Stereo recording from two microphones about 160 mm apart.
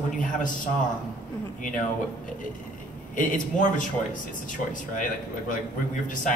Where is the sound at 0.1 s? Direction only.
55° left (ahead or behind).